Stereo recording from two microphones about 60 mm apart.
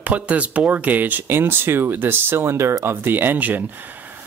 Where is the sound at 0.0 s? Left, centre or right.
Right.